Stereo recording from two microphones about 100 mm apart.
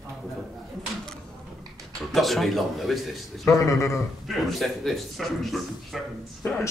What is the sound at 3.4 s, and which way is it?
Speech, 30° left (ahead or behind).